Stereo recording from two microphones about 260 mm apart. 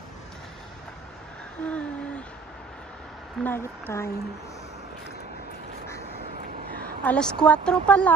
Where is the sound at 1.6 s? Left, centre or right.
Centre.